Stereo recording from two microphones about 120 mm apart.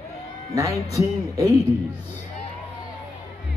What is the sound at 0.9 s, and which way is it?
Speech, 30° right (ahead or behind).